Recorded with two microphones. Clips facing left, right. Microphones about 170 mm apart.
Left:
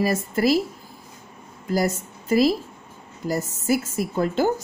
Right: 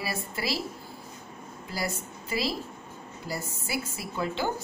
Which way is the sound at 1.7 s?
45° left (ahead or behind).